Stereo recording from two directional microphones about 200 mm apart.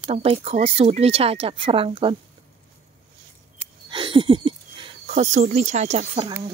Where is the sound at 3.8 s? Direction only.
25° right (ahead or behind).